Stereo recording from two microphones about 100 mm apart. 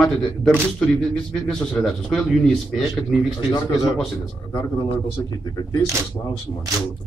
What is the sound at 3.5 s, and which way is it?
A man's voice, 55° left (ahead or behind).